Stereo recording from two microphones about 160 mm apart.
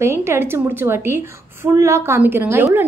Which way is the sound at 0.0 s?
15° right (ahead or behind).